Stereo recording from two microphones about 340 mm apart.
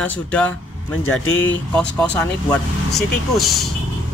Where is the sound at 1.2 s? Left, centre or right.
Left.